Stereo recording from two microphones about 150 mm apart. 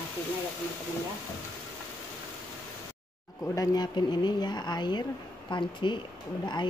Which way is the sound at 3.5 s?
30° left (ahead or behind).